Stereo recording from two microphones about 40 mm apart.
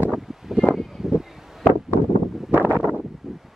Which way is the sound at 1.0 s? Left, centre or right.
Centre.